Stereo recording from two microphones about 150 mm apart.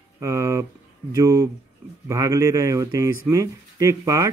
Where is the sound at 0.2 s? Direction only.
20° right (ahead or behind).